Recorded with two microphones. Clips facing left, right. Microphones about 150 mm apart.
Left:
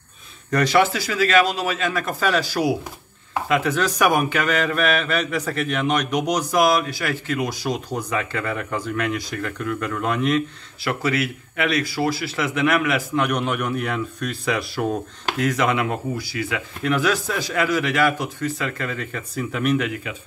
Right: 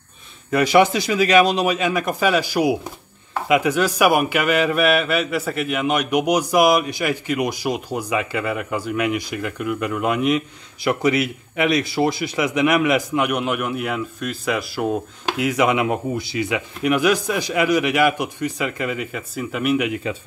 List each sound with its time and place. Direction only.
0.5 s speech: 10° right (ahead or behind)
19.9 s speech: 30° right (ahead or behind)